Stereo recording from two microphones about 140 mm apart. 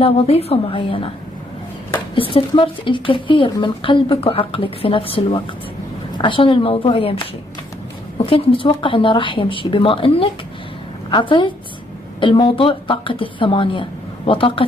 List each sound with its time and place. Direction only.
0.0 s a woman's voice: 45° left (ahead or behind)
2.1 s a woman's voice: 40° left (ahead or behind)
8.3 s a woman's voice: 40° left (ahead or behind)